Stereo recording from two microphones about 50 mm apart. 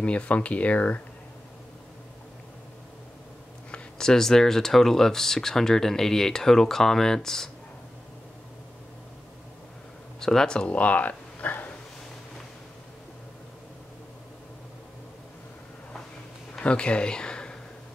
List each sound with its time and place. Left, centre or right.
0.0 s speech: left
4.0 s speech: centre
10.2 s speech: centre
10.7 s a sound: left
16.5 s speech: left